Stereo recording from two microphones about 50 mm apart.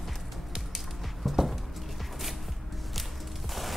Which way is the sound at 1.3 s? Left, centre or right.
Centre.